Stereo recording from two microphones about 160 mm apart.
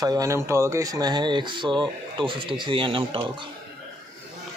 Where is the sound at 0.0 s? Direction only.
25° right (ahead or behind).